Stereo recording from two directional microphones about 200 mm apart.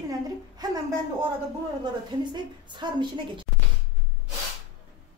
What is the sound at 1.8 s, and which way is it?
A woman's voice, 20° right (ahead or behind).